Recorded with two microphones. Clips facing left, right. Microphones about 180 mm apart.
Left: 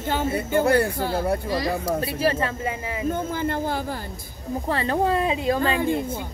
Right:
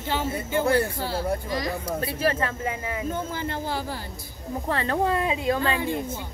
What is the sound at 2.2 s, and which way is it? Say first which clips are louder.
Speech: left 2 dB; 5° left (ahead or behind).